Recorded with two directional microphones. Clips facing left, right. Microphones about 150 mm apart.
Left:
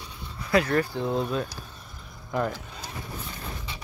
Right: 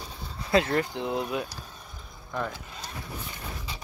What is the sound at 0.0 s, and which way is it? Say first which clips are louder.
Speech: right 1 dB; 35° right (ahead or behind).